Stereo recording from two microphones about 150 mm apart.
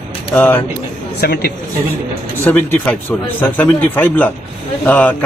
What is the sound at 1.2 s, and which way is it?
Speech, 90° left.